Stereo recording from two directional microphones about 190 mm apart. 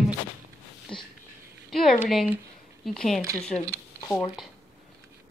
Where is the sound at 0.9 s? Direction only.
25° left (ahead or behind).